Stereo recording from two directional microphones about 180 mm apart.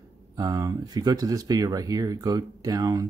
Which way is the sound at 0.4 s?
20° right (ahead or behind).